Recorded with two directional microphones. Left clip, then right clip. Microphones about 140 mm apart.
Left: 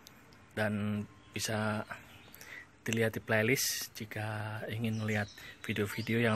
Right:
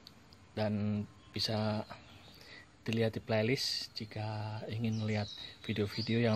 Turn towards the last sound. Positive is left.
turn(degrees=-10)  # may be behind; listen again after turning